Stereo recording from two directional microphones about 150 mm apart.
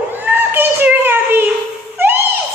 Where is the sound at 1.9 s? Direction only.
15° right (ahead or behind).